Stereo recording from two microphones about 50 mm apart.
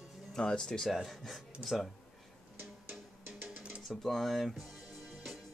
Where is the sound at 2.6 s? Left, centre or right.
Centre.